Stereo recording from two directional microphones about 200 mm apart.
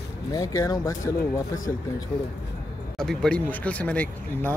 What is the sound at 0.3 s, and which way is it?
Speech, 20° left (ahead or behind).